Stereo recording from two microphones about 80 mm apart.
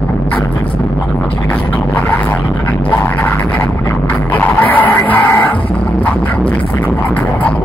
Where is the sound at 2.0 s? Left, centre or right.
Centre.